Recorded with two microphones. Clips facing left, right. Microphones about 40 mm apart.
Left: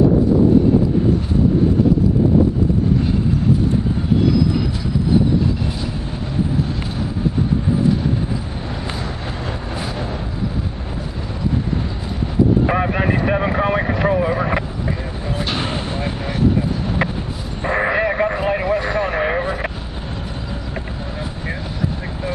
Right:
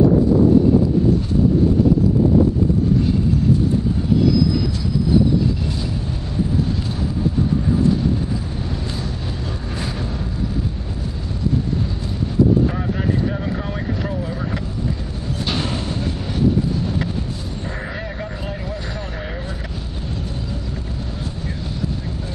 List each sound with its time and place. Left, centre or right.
12.6 s vehicle: left
15.4 s a sound: centre
17.6 s sheep: left
19.1 s vehicle: left